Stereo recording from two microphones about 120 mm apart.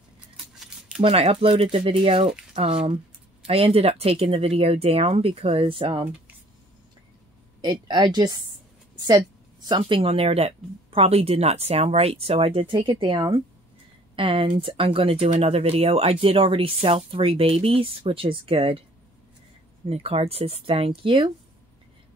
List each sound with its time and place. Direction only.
0.6 s a sound: 5° right (ahead or behind)
1.0 s speech: 50° right (ahead or behind)
7.6 s speech: 40° right (ahead or behind)
19.9 s speech: 55° right (ahead or behind)